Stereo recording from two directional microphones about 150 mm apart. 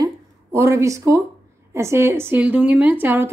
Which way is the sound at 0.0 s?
20° right (ahead or behind).